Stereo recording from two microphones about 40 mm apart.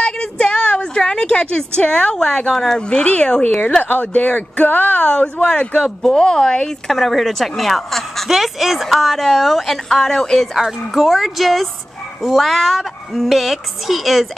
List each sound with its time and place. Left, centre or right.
0.0 s a sound: left
1.9 s speech: left
2.9 s speech: left
3.8 s speech: left
5.0 s speech: left
6.9 s a woman's voice: centre
8.3 s a woman's voice: centre
9.8 s speech: centre
10.5 s a woman's voice: centre